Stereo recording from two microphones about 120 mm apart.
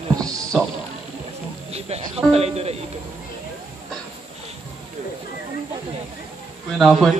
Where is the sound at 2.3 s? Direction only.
55° right (ahead or behind).